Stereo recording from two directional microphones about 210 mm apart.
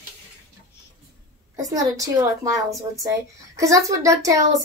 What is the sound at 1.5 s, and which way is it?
A woman's voice, 15° right (ahead or behind).